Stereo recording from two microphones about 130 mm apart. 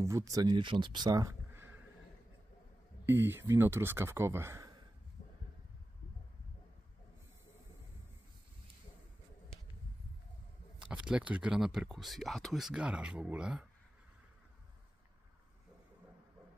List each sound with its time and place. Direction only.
0.0 s speech: 25° right (ahead or behind)
1.5 s a sound: 15° right (ahead or behind)
3.1 s speech: 15° right (ahead or behind)
10.8 s speech: 5° right (ahead or behind)